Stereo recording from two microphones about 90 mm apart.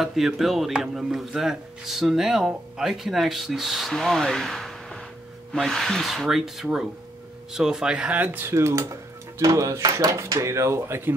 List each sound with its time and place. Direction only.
0.0 s a man's voice: 5° right (ahead or behind); by 11.1 s 25° right (ahead or behind)